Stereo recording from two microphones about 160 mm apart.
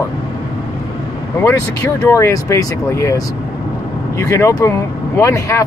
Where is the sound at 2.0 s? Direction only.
20° left (ahead or behind).